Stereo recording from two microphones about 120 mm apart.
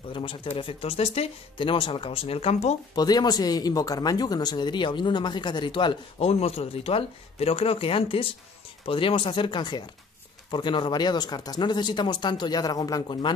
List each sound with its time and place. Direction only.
0.1 s speech: 45° left (ahead or behind); by 2.8 s 65° left (ahead or behind)
2.9 s speech: 35° left (ahead or behind)
6.1 s speech: 55° left (ahead or behind); by 13.3 s 35° left (ahead or behind)